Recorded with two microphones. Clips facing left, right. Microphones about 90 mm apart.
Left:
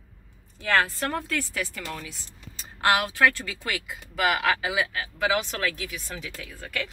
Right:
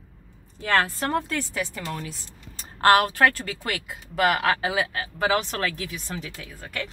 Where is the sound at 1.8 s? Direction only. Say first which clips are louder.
Right 3 dB; 40° right (ahead or behind).